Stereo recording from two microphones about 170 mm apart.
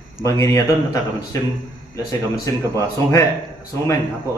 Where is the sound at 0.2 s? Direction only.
20° left (ahead or behind).